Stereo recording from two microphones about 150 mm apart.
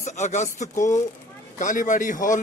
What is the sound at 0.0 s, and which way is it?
Speech, 50° left (ahead or behind).